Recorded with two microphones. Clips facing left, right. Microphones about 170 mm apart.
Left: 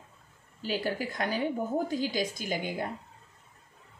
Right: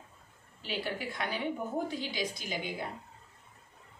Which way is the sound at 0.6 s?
40° left (ahead or behind).